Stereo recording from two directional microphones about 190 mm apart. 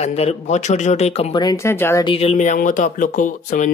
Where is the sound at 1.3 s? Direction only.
20° left (ahead or behind).